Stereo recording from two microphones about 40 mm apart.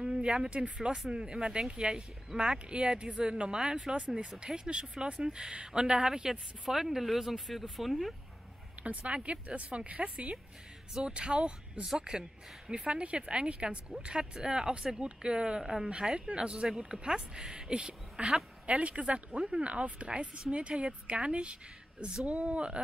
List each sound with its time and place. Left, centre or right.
0.0 s speech: centre
8.8 s a woman's voice: right
18.7 s a woman's voice: right